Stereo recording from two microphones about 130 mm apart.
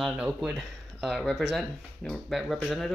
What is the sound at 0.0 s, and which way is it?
Speech, 5° right (ahead or behind).